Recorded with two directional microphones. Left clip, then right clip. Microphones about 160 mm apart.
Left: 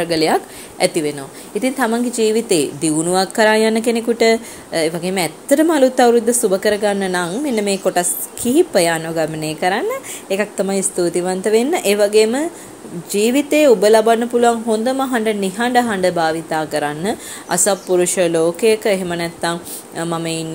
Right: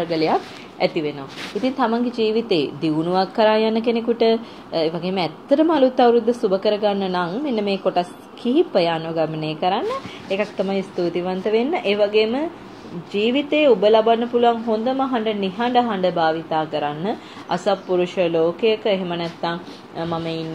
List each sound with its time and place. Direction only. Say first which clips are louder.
0.0 s a woman's voice: left 4 dB; 50° left (ahead or behind)